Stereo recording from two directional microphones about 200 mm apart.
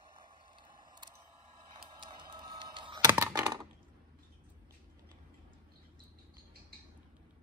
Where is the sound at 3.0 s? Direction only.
15° right (ahead or behind).